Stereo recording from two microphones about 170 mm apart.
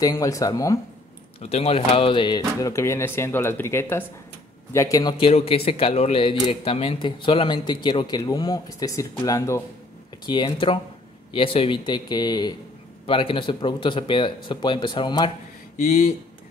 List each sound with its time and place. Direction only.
0.0 s speech: 20° left (ahead or behind)
1.4 s speech: 40° left (ahead or behind); by 5.1 s 20° left (ahead or behind)
5.2 s speech: 35° left (ahead or behind)